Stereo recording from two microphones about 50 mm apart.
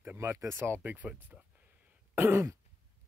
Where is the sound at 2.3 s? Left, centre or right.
Right.